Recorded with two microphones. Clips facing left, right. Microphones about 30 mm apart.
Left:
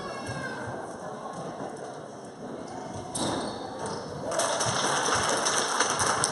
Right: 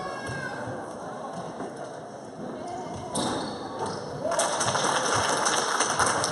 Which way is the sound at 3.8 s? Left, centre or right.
Centre.